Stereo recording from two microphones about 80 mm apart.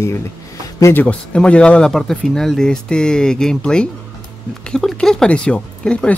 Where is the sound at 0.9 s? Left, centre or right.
Centre.